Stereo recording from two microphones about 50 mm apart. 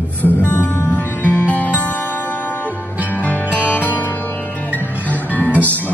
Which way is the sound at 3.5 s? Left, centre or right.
Left.